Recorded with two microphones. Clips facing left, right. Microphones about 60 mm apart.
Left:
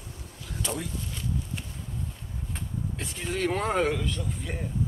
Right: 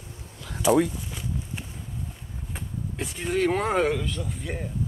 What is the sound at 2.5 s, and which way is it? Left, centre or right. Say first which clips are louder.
Speech: right 2 dB; centre.